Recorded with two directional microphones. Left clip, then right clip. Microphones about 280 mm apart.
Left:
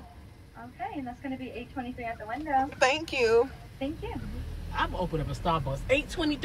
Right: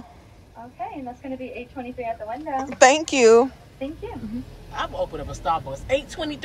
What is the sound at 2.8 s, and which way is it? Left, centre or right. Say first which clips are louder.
Speech: right 10 dB; right.